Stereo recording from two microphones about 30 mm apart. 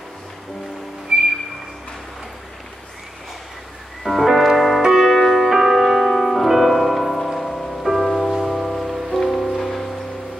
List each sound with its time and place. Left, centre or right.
1.1 s music: right
4.0 s music: centre
4.8 s music: centre
6.0 s music: centre
9.2 s music: centre